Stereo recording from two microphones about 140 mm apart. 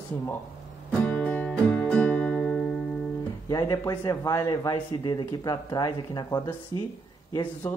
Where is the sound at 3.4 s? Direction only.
25° left (ahead or behind).